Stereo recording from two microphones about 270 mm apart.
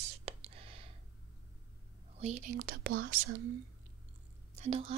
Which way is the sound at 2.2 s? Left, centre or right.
Right.